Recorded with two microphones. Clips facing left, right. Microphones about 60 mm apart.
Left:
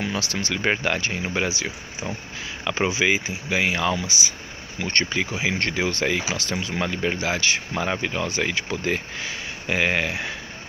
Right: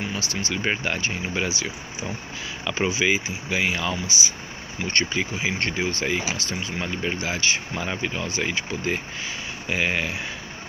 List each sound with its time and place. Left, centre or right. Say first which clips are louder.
0.0 s speech: left 2 dB; left
5.3 s speech: left 1 dB; left